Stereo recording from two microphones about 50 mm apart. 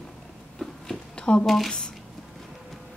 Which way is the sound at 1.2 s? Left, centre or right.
Centre.